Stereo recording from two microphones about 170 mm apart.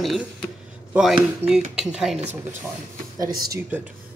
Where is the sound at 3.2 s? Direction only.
20° right (ahead or behind).